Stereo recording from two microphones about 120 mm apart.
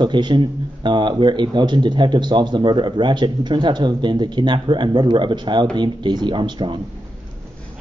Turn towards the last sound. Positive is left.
turn(degrees=-40)  # may be behind; listen again after turning